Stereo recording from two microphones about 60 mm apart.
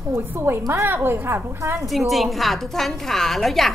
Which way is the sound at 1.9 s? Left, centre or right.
Centre.